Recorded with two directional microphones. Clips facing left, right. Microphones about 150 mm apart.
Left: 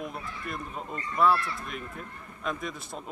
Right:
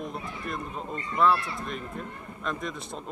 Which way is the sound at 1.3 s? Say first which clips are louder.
Even; 20° right (ahead or behind).